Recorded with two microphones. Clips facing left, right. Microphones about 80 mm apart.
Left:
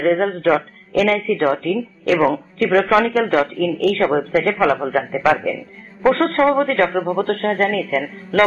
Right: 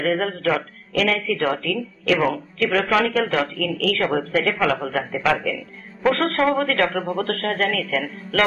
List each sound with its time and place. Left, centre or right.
0.0 s a man's voice: left
2.1 s a man's voice: centre